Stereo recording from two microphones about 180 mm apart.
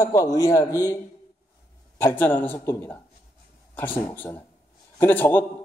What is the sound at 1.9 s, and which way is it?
A man's voice, 10° left (ahead or behind).